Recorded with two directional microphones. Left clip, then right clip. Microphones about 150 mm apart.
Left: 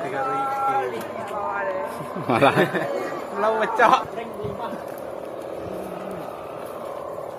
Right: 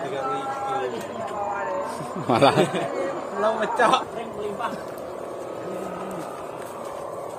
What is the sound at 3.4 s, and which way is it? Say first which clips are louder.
Speech: left 2 dB; 35° left (ahead or behind).